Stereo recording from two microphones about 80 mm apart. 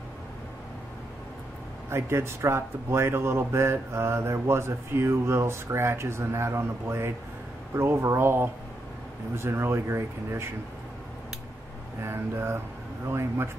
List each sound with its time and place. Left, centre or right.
1.9 s speech: right
12.0 s speech: right